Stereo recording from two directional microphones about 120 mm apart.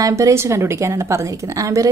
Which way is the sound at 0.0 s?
25° right (ahead or behind).